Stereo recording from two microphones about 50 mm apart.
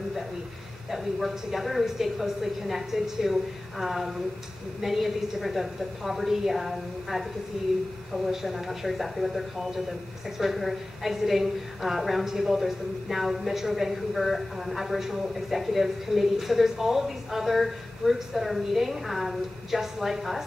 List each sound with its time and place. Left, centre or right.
0.9 s a woman's voice: centre